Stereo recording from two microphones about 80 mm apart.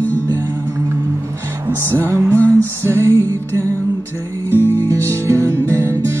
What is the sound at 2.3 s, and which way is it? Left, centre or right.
Music, left.